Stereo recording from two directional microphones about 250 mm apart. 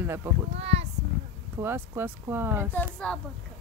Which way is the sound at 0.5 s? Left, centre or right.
Right.